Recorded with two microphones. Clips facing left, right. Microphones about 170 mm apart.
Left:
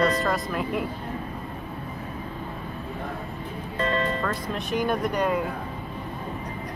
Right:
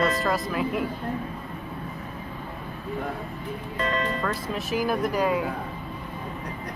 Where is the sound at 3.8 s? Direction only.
30° left (ahead or behind).